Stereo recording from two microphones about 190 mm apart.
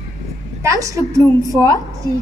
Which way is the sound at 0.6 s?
15° right (ahead or behind).